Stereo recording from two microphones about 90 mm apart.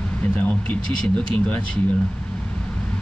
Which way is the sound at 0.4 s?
15° left (ahead or behind).